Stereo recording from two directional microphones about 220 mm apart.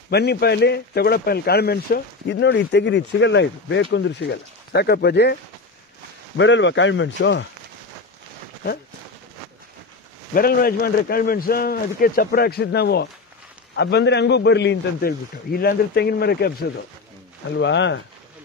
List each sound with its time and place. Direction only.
0.1 s a man's voice: 45° left (ahead or behind)
10.3 s speech: 40° left (ahead or behind)